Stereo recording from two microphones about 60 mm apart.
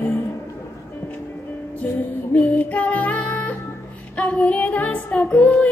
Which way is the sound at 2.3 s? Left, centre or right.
Left.